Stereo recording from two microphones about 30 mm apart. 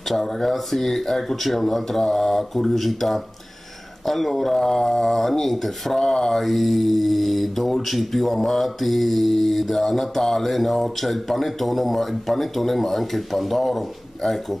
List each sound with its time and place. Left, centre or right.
0.1 s speech: centre
5.9 s a sound: left
6.3 s speech: centre